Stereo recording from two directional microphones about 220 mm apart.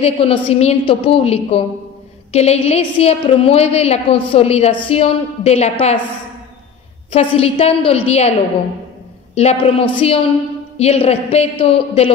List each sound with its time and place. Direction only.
0.0 s a woman's voice: 25° left (ahead or behind)
7.1 s a woman's voice: 25° left (ahead or behind)